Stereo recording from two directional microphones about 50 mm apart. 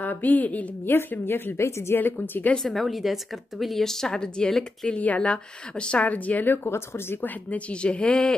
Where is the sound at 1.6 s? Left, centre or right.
Left.